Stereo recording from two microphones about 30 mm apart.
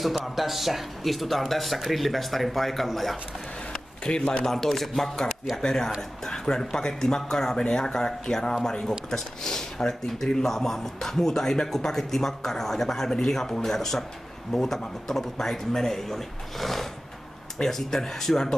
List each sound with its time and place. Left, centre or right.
0.0 s speech: centre
4.0 s speech: left
4.5 s a man's voice: centre